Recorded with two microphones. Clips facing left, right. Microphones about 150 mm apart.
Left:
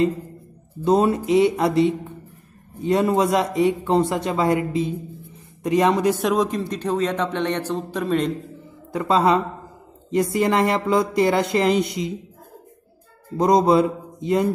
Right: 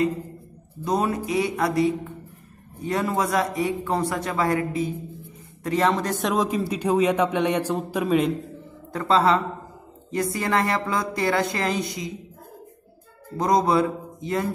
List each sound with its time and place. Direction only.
0.8 s speech: 25° left (ahead or behind)
6.2 s a man's voice: centre (ahead or behind)
8.9 s speech: 15° left (ahead or behind)
13.4 s speech: 20° left (ahead or behind)